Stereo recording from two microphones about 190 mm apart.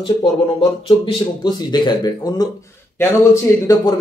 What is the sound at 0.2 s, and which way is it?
Speech, 30° left (ahead or behind).